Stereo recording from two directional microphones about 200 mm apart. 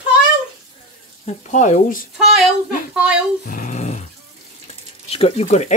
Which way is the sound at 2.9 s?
5° right (ahead or behind).